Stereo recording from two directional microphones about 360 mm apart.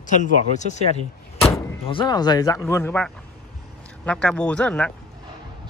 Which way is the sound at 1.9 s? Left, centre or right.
Centre.